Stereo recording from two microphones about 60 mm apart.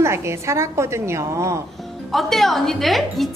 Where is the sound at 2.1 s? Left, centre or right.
Centre.